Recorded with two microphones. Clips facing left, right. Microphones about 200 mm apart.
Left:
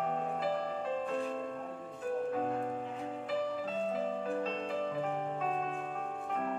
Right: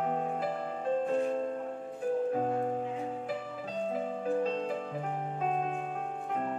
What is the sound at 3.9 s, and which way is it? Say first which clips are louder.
Music: right 2 dB; 50° right (ahead or behind).